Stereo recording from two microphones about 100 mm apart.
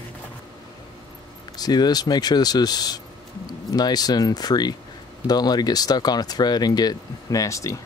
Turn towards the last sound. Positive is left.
turn(degrees=35)  # may be behind; listen again after turning